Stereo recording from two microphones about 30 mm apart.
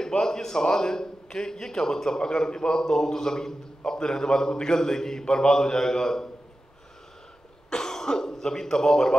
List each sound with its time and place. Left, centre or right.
0.0 s a man's voice: centre
5.2 s a man's voice: left
7.7 s cough: centre